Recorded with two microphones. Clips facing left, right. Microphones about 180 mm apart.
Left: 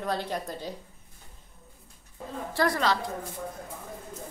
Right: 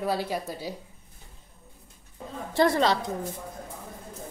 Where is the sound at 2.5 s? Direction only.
25° right (ahead or behind).